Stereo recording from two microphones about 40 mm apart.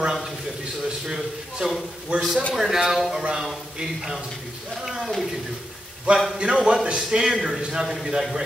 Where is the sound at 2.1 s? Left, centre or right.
Right.